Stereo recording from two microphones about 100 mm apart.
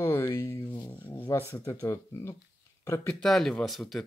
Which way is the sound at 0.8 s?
25° left (ahead or behind).